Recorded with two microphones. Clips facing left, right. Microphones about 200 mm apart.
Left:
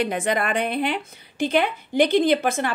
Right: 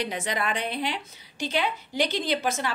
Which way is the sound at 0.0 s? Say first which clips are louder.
Left 6 dB; 55° left (ahead or behind).